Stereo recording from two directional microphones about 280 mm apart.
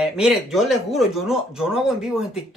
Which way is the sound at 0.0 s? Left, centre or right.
Centre.